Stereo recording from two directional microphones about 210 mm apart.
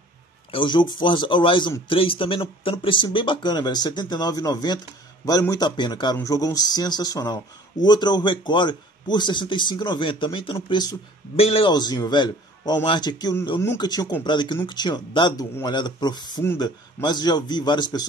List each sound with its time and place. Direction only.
0.5 s a man's voice: 25° left (ahead or behind)